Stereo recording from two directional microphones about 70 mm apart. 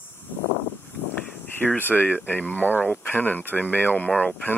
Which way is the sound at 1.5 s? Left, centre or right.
Left.